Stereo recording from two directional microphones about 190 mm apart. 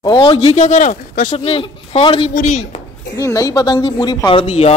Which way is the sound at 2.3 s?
40° left (ahead or behind).